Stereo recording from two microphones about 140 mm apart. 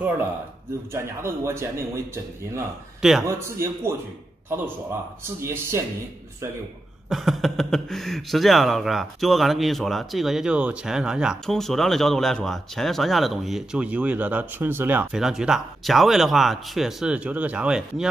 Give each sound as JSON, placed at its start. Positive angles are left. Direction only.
{"t": 0.9, "sound": "a man's voice", "side_deg": -20}
{"t": 3.0, "sound": "a man's voice", "side_deg": 0}
{"t": 3.3, "sound": "a man's voice", "side_deg": -20}
{"t": 5.4, "sound": "speech", "side_deg": -20}
{"t": 7.1, "sound": "speech", "side_deg": 0}
{"t": 15.1, "sound": "speech", "side_deg": -5}